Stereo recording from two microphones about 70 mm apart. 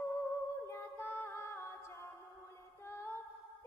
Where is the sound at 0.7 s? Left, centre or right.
Left.